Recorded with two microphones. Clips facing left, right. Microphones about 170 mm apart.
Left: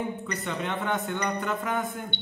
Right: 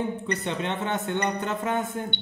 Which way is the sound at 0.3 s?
25° right (ahead or behind).